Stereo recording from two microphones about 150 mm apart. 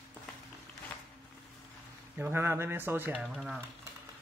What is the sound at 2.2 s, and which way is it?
Speech, 15° right (ahead or behind).